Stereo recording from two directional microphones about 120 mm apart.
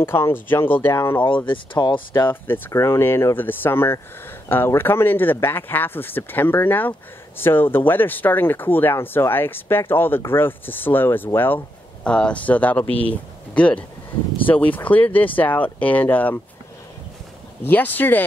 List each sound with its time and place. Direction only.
0.0 s speech: 20° left (ahead or behind)
1.2 s speech: 45° left (ahead or behind)
2.2 s speech: 15° left (ahead or behind)
17.6 s speech: 15° left (ahead or behind)